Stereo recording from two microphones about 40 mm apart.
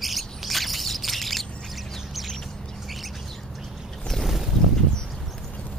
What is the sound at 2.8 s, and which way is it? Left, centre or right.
Bird, centre.